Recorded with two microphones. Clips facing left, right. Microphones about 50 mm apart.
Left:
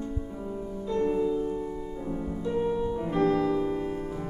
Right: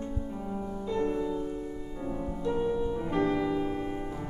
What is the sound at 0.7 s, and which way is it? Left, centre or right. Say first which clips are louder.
Music: left 3 dB; centre.